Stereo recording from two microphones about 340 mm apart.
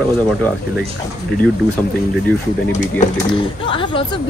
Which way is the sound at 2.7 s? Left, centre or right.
Left.